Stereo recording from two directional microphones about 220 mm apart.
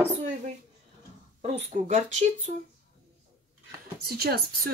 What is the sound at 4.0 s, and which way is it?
Speech, 45° right (ahead or behind).